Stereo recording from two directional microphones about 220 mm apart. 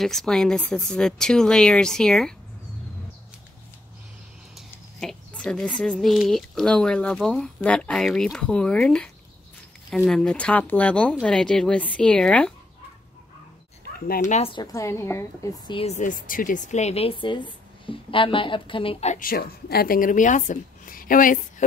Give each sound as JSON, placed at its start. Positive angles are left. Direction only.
{"t": 0.0, "sound": "speech", "side_deg": 0}
{"t": 4.6, "sound": "speech", "side_deg": 5}
{"t": 13.9, "sound": "speech", "side_deg": 40}
{"t": 14.3, "sound": "a woman's voice", "side_deg": 25}